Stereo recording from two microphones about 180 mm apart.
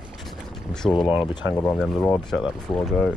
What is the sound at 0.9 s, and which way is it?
Speech, 25° left (ahead or behind).